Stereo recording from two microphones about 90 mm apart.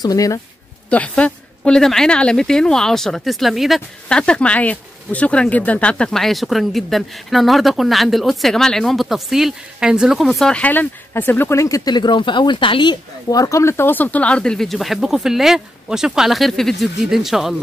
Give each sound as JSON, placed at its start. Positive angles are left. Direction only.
{"t": 0.0, "sound": "speech", "side_deg": 40}
{"t": 0.8, "sound": "speech", "side_deg": 15}
{"t": 4.1, "sound": "speech", "side_deg": 10}
{"t": 10.5, "sound": "speech", "side_deg": 15}
{"t": 11.9, "sound": "speech", "side_deg": 60}
{"t": 13.3, "sound": "speech", "side_deg": 40}